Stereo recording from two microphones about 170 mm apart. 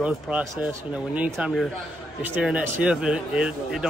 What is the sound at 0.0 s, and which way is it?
Speech, 10° right (ahead or behind).